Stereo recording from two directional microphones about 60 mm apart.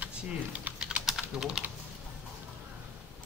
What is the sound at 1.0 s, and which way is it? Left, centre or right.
Typing, centre.